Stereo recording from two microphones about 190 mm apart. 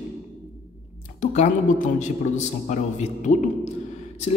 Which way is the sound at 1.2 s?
40° left (ahead or behind).